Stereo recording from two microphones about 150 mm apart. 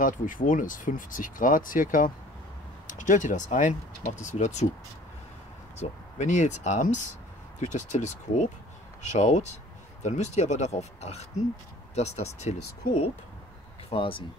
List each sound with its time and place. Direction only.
0.0 s speech: 65° left (ahead or behind)
5.8 s speech: 50° left (ahead or behind)
13.8 s speech: 35° left (ahead or behind)